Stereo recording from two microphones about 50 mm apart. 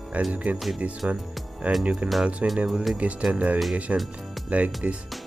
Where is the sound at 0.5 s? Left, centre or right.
Centre.